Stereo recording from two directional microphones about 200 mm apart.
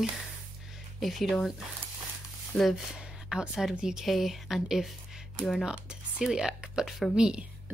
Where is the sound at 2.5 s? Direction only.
Centre (ahead or behind).